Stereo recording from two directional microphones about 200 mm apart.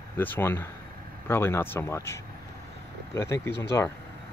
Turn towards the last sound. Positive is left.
turn(degrees=15)  # may be behind; listen again after turning